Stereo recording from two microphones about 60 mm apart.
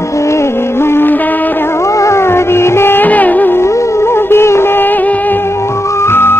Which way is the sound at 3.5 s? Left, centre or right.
Left.